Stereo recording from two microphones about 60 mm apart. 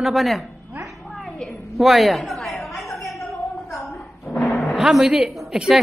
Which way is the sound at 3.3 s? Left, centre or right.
Left.